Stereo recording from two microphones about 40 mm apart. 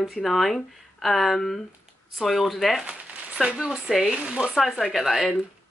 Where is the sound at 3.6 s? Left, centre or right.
Centre.